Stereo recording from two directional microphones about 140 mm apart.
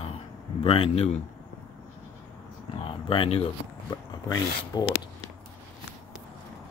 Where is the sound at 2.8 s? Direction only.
40° left (ahead or behind).